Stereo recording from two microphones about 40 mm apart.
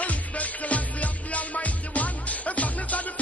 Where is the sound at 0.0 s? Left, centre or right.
Left.